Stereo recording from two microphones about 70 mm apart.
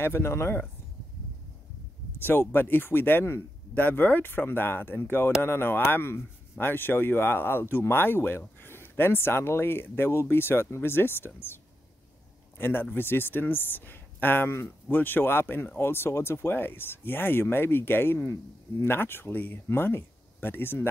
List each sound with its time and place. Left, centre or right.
0.0 s speech: left
2.1 s speech: left